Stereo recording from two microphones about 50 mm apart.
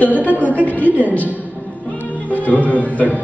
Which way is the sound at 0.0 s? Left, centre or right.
Left.